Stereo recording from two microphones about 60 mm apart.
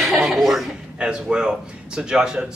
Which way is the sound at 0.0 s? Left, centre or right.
Centre.